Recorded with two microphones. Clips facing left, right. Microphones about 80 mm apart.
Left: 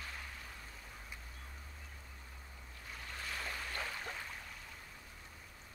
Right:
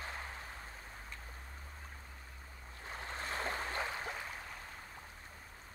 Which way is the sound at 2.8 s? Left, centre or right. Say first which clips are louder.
Right 4 dB; right.